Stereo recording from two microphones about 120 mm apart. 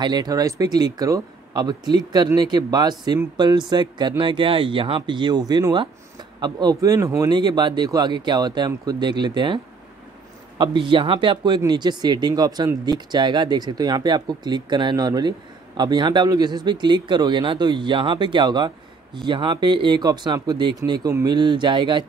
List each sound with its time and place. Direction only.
0.0 s speech: 35° right (ahead or behind)
10.6 s speech: 45° right (ahead or behind)